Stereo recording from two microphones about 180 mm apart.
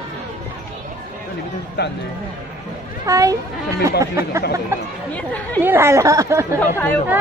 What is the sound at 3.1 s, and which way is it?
Speech, 20° right (ahead or behind).